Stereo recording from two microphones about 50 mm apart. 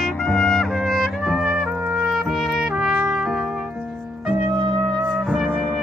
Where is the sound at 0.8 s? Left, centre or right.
Centre.